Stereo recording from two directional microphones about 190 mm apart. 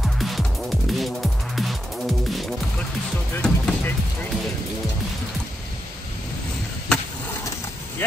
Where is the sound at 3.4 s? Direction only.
5° left (ahead or behind).